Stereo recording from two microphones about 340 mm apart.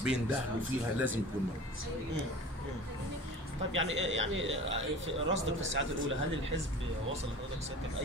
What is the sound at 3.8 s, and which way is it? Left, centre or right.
Speech, right.